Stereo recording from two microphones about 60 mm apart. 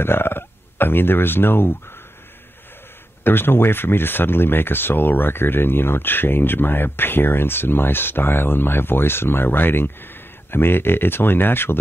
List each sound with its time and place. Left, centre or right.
0.0 s speech: left
3.3 s speech: left